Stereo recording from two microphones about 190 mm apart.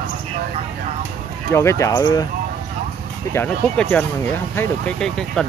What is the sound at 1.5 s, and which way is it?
Speech, 15° left (ahead or behind).